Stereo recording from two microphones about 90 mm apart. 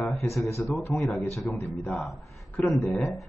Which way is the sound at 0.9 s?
5° left (ahead or behind).